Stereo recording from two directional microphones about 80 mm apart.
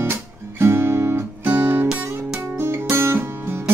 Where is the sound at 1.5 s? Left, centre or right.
Right.